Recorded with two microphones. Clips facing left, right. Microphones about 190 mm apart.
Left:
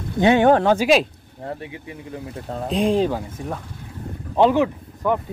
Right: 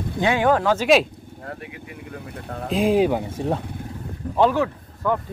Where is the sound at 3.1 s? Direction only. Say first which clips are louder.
Right 4 dB; 25° right (ahead or behind).